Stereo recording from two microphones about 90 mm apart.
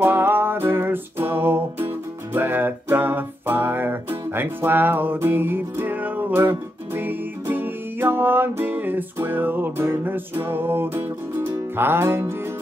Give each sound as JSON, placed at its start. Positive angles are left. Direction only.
{"t": 0.0, "sound": "music", "side_deg": -25}